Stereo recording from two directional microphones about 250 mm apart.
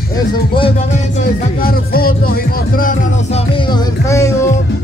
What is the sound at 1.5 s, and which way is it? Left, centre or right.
Speech, left.